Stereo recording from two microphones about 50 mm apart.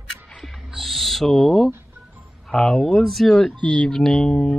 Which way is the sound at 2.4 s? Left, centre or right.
Centre.